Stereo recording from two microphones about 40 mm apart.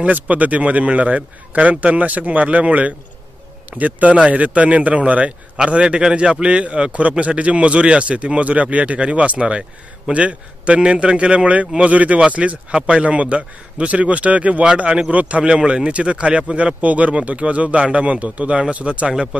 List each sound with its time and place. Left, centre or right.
0.0 s a man's voice: right
12.7 s a man's voice: right
16.8 s a man's voice: right